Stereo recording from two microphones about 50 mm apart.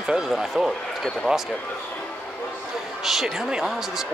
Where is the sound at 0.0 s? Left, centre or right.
Centre.